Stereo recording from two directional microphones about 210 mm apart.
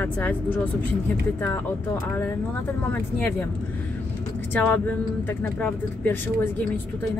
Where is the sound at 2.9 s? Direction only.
10° left (ahead or behind).